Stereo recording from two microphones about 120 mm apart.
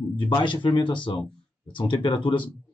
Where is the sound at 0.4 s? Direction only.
40° left (ahead or behind).